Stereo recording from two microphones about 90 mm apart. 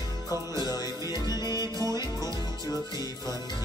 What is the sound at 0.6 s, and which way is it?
Music, 45° left (ahead or behind).